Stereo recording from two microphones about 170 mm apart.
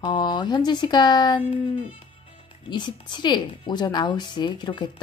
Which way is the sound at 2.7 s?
25° left (ahead or behind).